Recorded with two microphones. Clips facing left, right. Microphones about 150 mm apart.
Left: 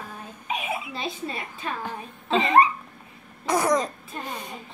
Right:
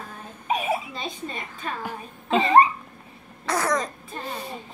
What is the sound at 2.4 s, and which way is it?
Cough, 35° right (ahead or behind).